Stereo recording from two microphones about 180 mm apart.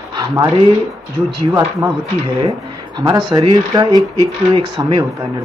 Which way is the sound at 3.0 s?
25° right (ahead or behind).